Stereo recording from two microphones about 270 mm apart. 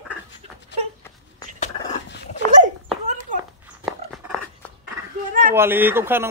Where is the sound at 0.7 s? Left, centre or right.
Left.